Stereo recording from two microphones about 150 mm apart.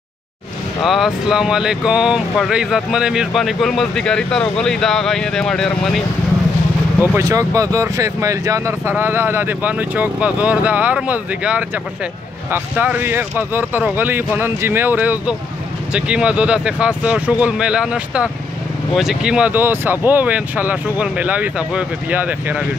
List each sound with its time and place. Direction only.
0.8 s speech: centre (ahead or behind)
7.2 s speech: 20° right (ahead or behind)